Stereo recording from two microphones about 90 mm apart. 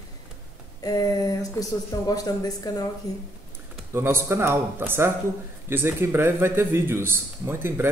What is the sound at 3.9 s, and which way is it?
Speech, 30° right (ahead or behind).